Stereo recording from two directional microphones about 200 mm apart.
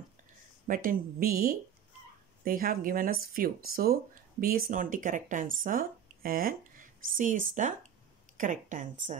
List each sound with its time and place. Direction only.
0.7 s a woman's voice: 45° right (ahead or behind)